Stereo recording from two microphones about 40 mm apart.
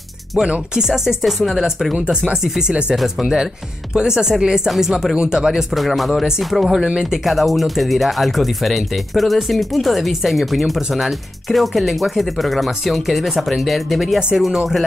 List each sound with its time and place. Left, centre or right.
0.3 s speech: centre
3.9 s a woman's voice: centre
5.7 s speech: centre
6.8 s speech: centre
7.2 s speech: centre